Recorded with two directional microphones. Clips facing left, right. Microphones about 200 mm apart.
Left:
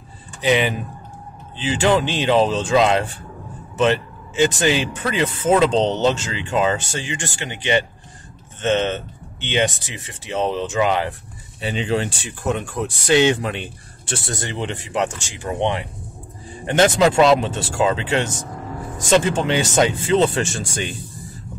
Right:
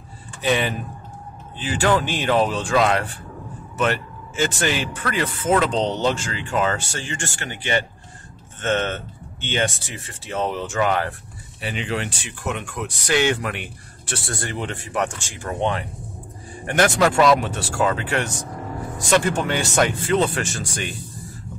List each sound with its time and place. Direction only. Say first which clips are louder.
0.4 s speech: left 3 dB; 15° left (ahead or behind)
3.7 s a sound: left 5 dB; 20° left (ahead or behind)
4.6 s speech: left 4 dB; 20° left (ahead or behind)
11.6 s speech: left 5 dB; 30° left (ahead or behind)